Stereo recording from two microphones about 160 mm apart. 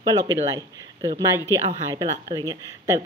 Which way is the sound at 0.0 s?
25° right (ahead or behind).